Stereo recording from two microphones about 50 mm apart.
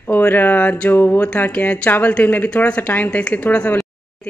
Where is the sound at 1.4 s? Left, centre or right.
Left.